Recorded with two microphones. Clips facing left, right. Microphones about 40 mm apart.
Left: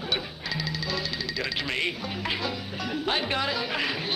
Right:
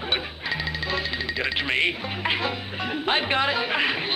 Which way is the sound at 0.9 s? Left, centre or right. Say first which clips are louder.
Right 4 dB; right.